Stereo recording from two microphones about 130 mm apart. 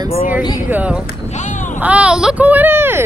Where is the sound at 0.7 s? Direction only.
10° right (ahead or behind).